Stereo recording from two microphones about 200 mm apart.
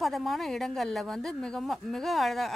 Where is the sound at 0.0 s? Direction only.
Centre (ahead or behind).